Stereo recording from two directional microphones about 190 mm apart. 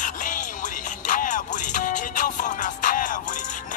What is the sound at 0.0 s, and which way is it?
Music, 40° left (ahead or behind).